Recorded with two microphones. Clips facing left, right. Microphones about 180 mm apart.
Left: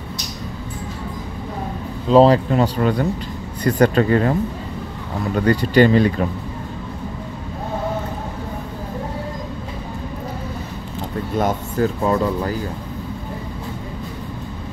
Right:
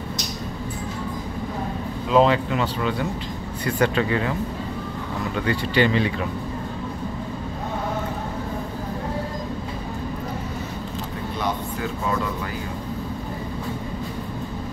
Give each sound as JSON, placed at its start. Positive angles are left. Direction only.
{"t": 2.0, "sound": "speech", "side_deg": 35}
{"t": 11.3, "sound": "speech", "side_deg": 45}